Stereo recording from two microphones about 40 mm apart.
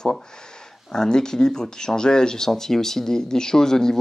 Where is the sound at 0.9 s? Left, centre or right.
Centre.